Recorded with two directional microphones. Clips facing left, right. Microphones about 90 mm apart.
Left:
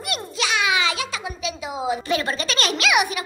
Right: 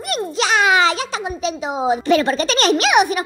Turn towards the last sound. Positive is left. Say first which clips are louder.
# right 6 dB
turn(degrees=-35)  # may be behind; listen again after turning